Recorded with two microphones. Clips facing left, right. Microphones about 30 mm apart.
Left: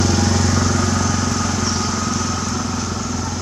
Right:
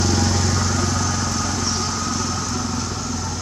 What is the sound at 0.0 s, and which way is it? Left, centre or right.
Vehicle, centre.